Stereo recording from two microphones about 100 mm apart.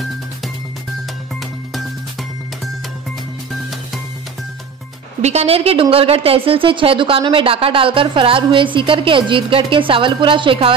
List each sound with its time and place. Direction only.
5.2 s a woman's voice: 90° right; by 10.7 s 60° right (ahead or behind)